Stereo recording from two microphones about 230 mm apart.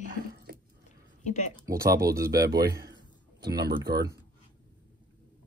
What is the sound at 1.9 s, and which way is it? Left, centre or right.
Speech, centre.